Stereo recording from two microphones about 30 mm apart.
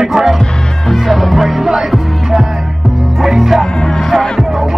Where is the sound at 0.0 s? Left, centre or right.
Centre.